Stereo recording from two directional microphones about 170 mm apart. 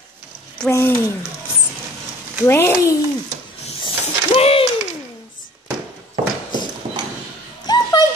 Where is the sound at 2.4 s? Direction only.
15° left (ahead or behind).